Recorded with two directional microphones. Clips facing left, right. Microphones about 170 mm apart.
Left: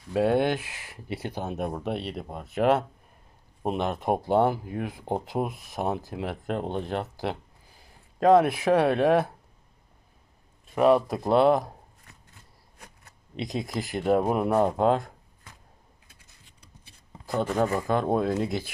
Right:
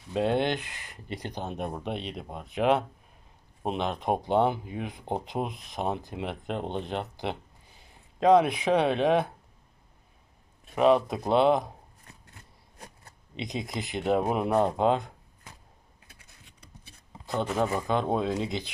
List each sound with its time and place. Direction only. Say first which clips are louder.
0.1 s speech: left 3 dB; 5° left (ahead or behind)
8.4 s speech: left 2 dB; 5° left (ahead or behind)
10.8 s speech: left 1 dB; 5° left (ahead or behind)
13.4 s speech: left 3 dB; centre (ahead or behind)
16.1 s a sound: right 2 dB; 65° right (ahead or behind)
17.6 s speech: left 2 dB; 10° right (ahead or behind)
17.8 s speech: left 2 dB; 5° left (ahead or behind)